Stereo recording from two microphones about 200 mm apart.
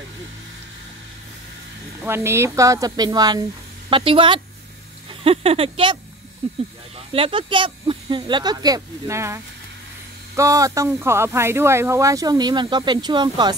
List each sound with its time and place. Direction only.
2.0 s speech: 10° right (ahead or behind)